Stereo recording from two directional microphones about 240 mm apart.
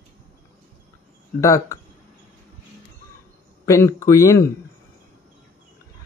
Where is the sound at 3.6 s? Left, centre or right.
Centre.